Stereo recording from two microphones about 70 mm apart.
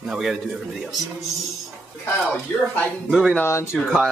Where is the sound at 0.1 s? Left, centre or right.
Centre.